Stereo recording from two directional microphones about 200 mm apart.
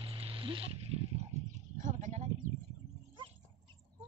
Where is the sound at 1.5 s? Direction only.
35° right (ahead or behind).